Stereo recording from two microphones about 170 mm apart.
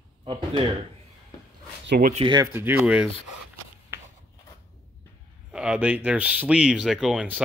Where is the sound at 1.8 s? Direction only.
80° right.